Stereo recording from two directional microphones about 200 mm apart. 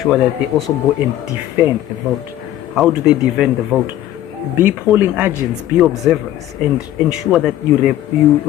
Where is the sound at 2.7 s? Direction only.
Centre (ahead or behind).